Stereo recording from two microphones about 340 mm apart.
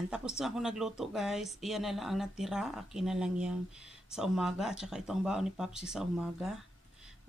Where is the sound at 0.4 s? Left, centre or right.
Centre.